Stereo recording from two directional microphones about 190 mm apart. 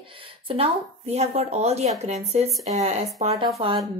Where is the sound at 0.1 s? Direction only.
30° right (ahead or behind).